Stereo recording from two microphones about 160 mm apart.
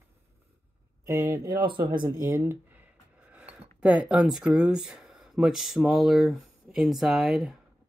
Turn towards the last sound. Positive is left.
turn(degrees=0)  # may be behind; listen again after turning